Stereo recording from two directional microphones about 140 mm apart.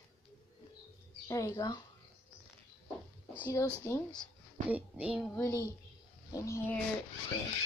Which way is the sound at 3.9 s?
20° left (ahead or behind).